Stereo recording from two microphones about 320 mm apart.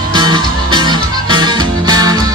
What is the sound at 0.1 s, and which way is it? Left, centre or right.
Music, centre.